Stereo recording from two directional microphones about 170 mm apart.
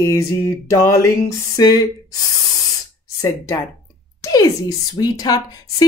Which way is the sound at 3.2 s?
15° left (ahead or behind).